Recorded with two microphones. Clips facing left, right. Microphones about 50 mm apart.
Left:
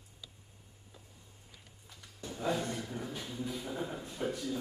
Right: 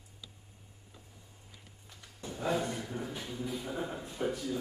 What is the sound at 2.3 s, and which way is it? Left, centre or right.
A man's voice, centre.